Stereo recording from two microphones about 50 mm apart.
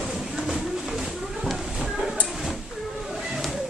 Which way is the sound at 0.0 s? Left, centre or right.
Centre.